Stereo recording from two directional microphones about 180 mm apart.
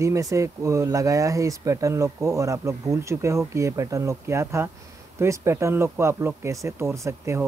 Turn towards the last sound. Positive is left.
turn(degrees=-15)  # may be behind; listen again after turning